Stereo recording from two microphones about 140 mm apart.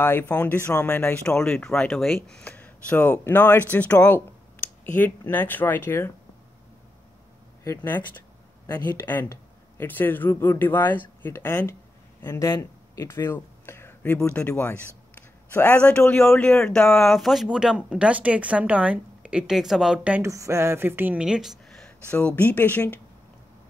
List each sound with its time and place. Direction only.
0.0 s speech: 15° left (ahead or behind)
7.6 s a man's voice: 15° left (ahead or behind); by 20.2 s 10° right (ahead or behind)
20.2 s speech: 20° right (ahead or behind); by 22.9 s 10° left (ahead or behind)